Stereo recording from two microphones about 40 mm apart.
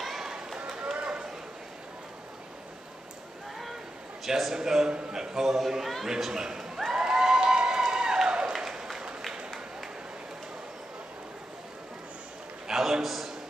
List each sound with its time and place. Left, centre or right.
0.0 s run: centre
0.7 s run: centre
4.2 s a man's voice: centre
4.6 s speech: centre
6.9 s cheering: centre
7.9 s a sound: centre
12.6 s a sound: centre